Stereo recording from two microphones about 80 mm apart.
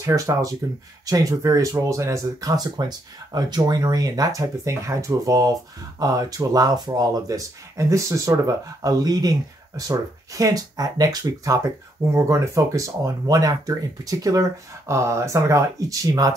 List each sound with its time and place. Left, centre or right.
0.0 s speech: right